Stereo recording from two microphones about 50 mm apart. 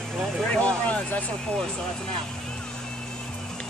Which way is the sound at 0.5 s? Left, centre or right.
Left.